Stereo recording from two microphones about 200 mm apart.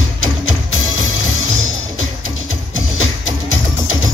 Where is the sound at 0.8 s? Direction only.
85° left.